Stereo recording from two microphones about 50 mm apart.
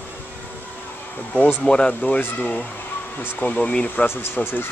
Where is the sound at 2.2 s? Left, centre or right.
Left.